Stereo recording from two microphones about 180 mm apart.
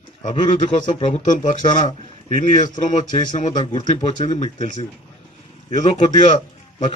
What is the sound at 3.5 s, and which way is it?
A man's voice, 35° left (ahead or behind).